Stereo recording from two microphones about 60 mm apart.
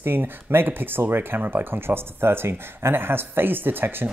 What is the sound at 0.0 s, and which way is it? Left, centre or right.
Speech, right.